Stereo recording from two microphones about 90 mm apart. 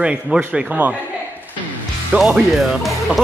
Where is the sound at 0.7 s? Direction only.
15° right (ahead or behind).